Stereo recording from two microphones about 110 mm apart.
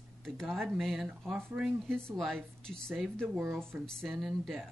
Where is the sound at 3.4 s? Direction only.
20° right (ahead or behind).